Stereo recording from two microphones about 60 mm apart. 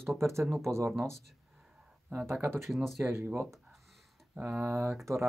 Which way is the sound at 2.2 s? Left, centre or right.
Right.